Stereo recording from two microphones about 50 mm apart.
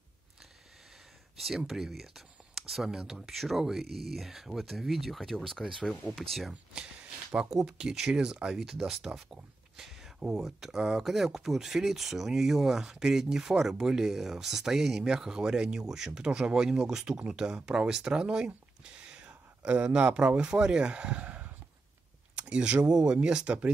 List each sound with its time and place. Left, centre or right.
1.7 s speech: centre
6.5 s speech: centre